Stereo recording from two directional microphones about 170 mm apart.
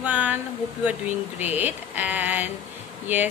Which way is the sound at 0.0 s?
10° right (ahead or behind).